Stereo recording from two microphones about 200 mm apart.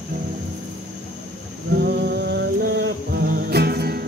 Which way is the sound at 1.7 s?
55° right (ahead or behind).